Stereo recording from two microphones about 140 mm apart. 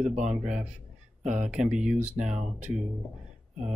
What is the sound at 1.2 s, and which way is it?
Speech, 60° right (ahead or behind).